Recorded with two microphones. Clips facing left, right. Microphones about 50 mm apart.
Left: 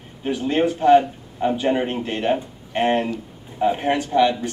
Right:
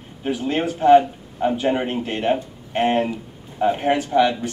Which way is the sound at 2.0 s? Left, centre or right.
Centre.